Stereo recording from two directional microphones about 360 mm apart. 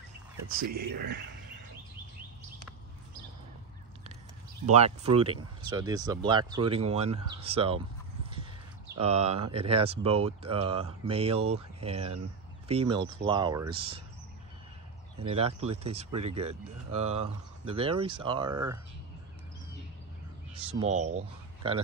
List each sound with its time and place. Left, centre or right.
0.5 s speech: right
4.6 s speech: centre
8.9 s speech: centre
15.2 s speech: centre
20.5 s speech: centre